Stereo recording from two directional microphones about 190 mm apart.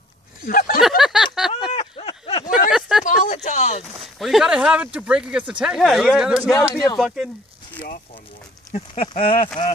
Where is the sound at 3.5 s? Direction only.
40° left (ahead or behind).